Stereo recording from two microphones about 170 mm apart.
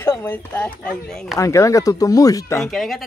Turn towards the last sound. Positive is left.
turn(degrees=0)  # may be behind; listen again after turning